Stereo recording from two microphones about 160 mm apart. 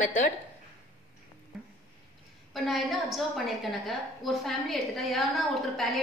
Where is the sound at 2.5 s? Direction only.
Centre (ahead or behind).